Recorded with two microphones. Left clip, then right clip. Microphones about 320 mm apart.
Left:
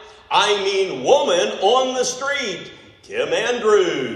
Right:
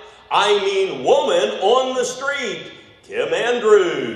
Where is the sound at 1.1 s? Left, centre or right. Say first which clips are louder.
Even; centre.